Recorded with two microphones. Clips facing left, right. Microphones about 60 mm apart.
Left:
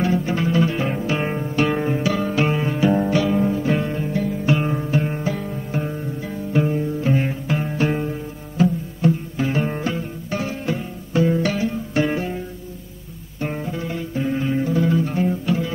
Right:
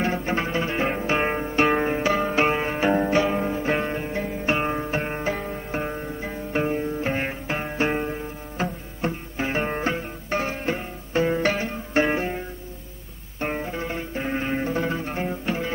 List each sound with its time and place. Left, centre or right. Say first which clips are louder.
0.0 s music: left 4 dB; right